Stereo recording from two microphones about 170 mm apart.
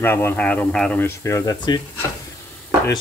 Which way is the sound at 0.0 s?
15° left (ahead or behind).